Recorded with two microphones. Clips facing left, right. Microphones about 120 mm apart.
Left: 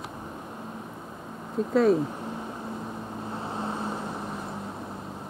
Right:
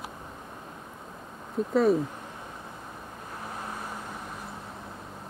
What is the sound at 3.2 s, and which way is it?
Vehicle, 25° left (ahead or behind).